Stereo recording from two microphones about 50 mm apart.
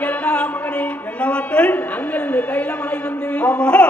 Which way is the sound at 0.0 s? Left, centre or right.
Left.